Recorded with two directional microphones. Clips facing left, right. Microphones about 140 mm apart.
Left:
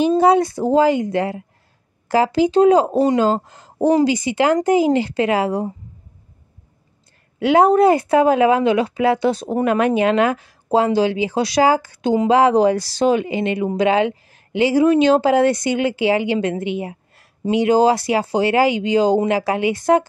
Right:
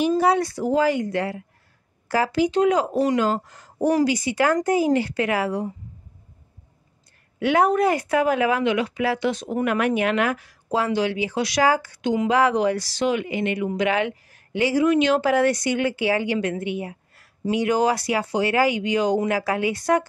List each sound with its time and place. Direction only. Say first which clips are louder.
0.0 s speech: left 5 dB; 25° left (ahead or behind)
7.3 s speech: left 6 dB; 30° left (ahead or behind)